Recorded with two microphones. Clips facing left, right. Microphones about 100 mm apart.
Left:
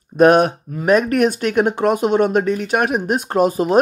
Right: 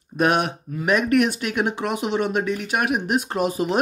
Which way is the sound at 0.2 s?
45° left (ahead or behind).